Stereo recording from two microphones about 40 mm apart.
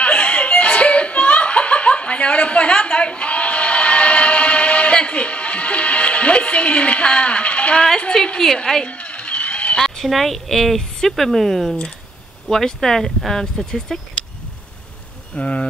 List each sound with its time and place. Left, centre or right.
0.0 s chuckle: left
4.9 s music: left
8.8 s a sound: left
9.8 s a woman's voice: centre
15.3 s speech: left